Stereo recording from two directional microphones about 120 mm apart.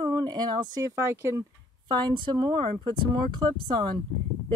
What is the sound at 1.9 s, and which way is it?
Speech, 40° right (ahead or behind).